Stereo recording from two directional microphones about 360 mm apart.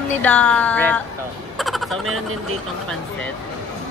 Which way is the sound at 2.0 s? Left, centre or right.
Right.